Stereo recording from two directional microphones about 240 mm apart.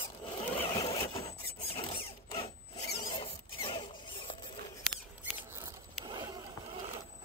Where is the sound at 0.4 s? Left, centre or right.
Left.